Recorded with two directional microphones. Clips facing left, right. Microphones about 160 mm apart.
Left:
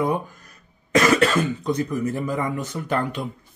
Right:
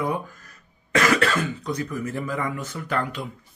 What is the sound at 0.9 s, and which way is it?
Speech, 20° left (ahead or behind).